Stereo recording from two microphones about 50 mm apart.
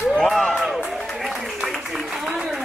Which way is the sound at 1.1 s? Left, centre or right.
Centre.